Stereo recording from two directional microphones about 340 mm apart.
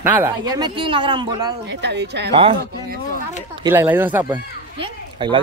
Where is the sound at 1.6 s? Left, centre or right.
Right.